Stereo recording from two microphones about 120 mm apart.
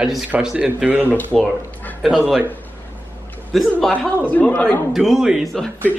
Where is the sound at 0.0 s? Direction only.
5° right (ahead or behind).